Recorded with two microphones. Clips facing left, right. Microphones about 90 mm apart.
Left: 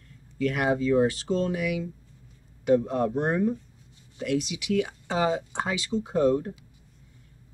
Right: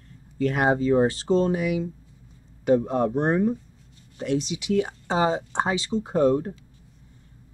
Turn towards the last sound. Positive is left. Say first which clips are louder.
# right 2 dB
turn(degrees=-40)  # may be behind; listen again after turning